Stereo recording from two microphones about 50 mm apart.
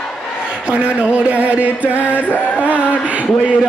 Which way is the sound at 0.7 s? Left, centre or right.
Right.